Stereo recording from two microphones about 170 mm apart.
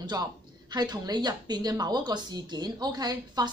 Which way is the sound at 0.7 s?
25° right (ahead or behind).